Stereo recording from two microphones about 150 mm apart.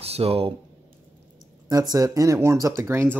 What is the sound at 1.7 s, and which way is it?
Speech, 25° right (ahead or behind).